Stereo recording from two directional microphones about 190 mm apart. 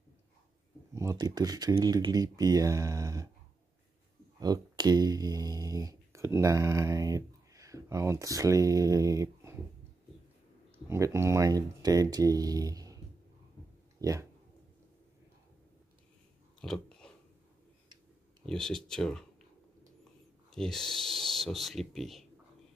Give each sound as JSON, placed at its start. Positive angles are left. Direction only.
{"t": 0.9, "sound": "speech", "side_deg": -15}
{"t": 4.4, "sound": "speech", "side_deg": -20}
{"t": 10.9, "sound": "speech", "side_deg": -15}
{"t": 16.6, "sound": "a sound", "side_deg": 5}
{"t": 18.4, "sound": "speech", "side_deg": 5}
{"t": 20.4, "sound": "speech", "side_deg": 5}